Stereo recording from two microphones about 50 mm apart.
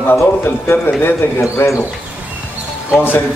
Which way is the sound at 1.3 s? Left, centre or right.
Left.